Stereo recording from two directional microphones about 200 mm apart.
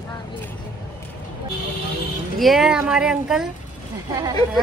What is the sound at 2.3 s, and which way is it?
A woman's voice, centre (ahead or behind).